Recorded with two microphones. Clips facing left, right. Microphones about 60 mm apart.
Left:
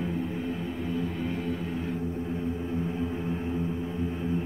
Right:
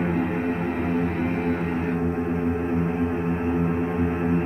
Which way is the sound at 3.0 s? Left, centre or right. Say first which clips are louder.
Right 7 dB; right.